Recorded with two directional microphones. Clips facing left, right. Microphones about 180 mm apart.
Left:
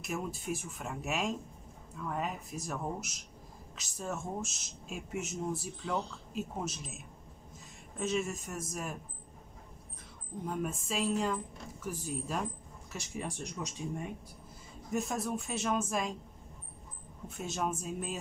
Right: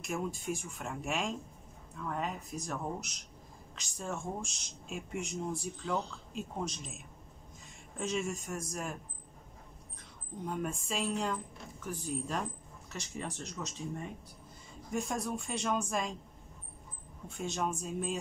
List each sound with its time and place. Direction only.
0.0 s speech: 5° left (ahead or behind)
8.0 s speech: centre (ahead or behind)
10.4 s speech: centre (ahead or behind)
14.9 s speech: centre (ahead or behind)
17.4 s speech: 5° left (ahead or behind)